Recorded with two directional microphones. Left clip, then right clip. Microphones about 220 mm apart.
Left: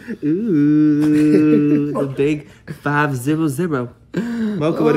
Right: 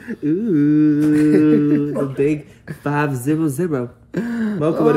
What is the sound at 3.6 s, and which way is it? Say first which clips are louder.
Speech: even; 15° left (ahead or behind).